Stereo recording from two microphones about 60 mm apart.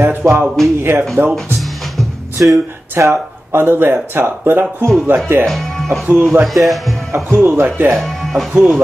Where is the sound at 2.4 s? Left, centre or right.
Right.